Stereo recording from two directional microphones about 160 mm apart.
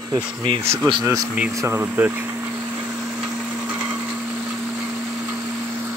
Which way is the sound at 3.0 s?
5° right (ahead or behind).